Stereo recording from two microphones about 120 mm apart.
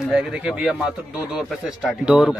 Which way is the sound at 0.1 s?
5° right (ahead or behind).